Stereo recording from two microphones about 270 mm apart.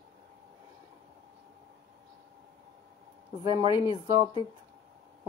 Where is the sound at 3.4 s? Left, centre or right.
Centre.